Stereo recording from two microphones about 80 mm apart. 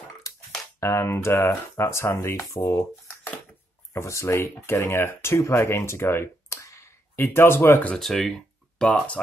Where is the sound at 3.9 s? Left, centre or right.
Left.